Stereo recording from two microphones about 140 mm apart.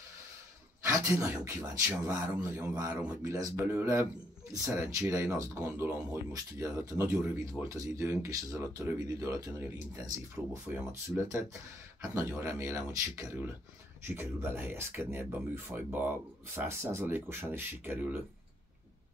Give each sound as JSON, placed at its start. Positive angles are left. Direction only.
{"t": 0.8, "sound": "speech", "side_deg": -20}
{"t": 3.2, "sound": "speech", "side_deg": -25}